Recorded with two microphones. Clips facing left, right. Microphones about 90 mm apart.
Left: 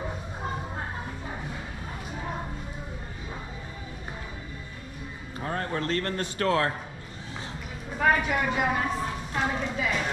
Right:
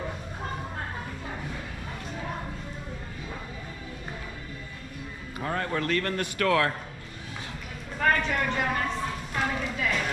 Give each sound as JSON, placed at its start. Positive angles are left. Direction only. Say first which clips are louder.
{"t": 5.4, "sound": "a man's voice", "louder": "right 1 dB", "side_deg": 25}
{"t": 8.0, "sound": "a woman's voice", "louder": "left 1 dB", "side_deg": 10}